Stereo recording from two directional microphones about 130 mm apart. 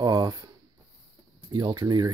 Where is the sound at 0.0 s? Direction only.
30° right (ahead or behind).